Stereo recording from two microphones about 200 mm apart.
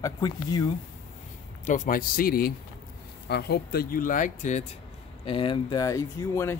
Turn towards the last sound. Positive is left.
turn(degrees=15)  # may be behind; listen again after turning